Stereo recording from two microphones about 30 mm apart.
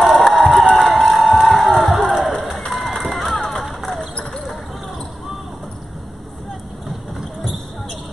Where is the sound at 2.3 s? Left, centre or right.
Centre.